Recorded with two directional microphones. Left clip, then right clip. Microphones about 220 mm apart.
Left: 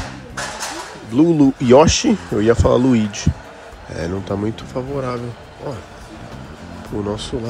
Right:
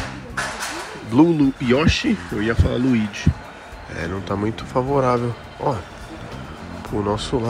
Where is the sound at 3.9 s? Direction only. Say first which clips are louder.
Left 2 dB; 15° left (ahead or behind).